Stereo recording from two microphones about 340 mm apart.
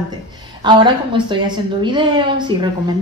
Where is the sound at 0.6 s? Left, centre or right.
Centre.